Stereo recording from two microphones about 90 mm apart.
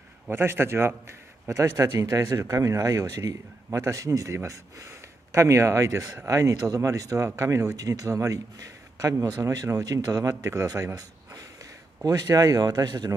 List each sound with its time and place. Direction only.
0.3 s a man's voice: 25° right (ahead or behind)
12.0 s speech: 45° right (ahead or behind)